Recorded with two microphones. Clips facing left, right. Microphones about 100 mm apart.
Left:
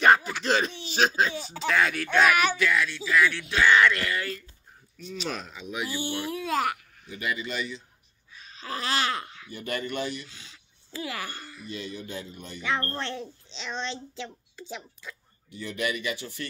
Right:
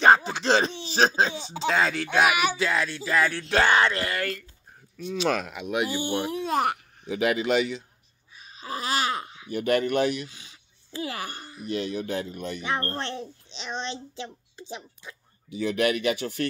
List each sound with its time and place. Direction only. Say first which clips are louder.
0.0 s speech: right 2 dB; 25° right (ahead or behind)
2.5 s speech: even; 30° right (ahead or behind)
4.2 s speech: right 3 dB; 55° right (ahead or behind)
5.2 s speech: right 9 dB; 70° right (ahead or behind)
5.9 s a child's voice: right 4 dB; 20° right (ahead or behind)
7.1 s speech: right 9 dB; 90° right
8.4 s a sound: right 1 dB; 15° right (ahead or behind)
9.5 s speech: right 10 dB; 65° right (ahead or behind)
10.2 s a sound: right 5 dB; 15° right (ahead or behind)
11.6 s speech: right 9 dB; 70° right (ahead or behind)
12.9 s a child's voice: right 1 dB; 20° right (ahead or behind)
15.5 s speech: right 7 dB; 75° right (ahead or behind)